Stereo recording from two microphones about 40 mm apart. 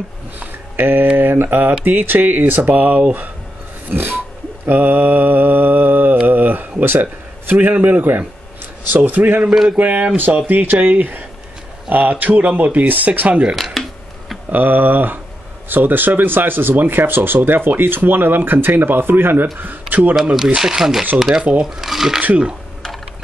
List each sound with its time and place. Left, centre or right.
0.4 s a sound: right
1.1 s speech: right
3.9 s speech: right
7.5 s speech: right
10.8 s speech: right
14.5 s speech: right
20.3 s speech: centre